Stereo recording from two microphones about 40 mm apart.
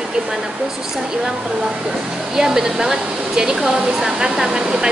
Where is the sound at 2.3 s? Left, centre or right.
Centre.